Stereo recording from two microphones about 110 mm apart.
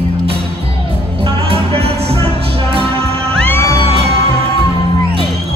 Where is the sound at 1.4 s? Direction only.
60° right (ahead or behind).